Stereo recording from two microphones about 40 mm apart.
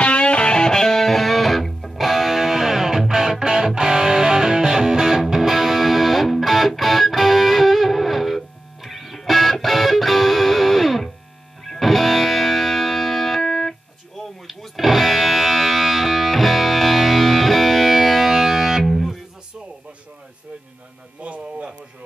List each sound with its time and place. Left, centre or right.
0.0 s music: left; by 18.9 s centre
18.9 s music: centre
21.2 s a sound: right